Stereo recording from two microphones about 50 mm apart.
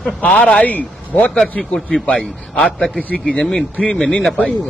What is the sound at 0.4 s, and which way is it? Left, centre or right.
Speech, left.